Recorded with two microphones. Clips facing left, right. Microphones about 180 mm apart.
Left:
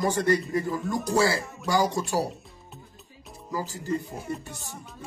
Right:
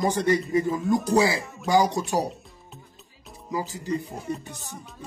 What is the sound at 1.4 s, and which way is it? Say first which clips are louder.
Speech: even; centre (ahead or behind).